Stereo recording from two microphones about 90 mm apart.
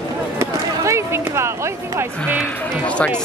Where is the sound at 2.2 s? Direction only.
15° left (ahead or behind).